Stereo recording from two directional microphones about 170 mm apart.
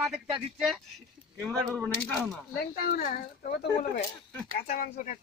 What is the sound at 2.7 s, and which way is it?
Speech, 55° left (ahead or behind).